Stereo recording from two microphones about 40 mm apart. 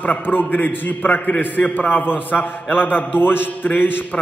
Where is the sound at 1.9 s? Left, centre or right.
Left.